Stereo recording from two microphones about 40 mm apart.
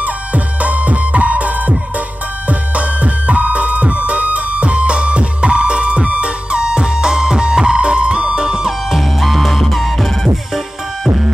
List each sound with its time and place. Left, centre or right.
0.0 s music: right; by 8.7 s centre
8.9 s music: centre